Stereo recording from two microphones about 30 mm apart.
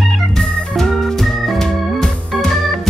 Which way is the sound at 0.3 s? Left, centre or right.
Centre.